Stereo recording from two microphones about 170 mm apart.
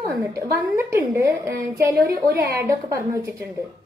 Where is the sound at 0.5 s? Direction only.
15° right (ahead or behind).